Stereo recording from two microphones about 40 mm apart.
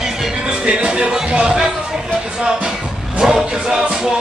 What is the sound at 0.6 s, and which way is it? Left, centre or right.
Music, right.